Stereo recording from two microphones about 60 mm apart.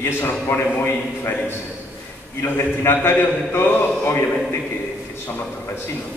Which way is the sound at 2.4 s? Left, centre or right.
Left.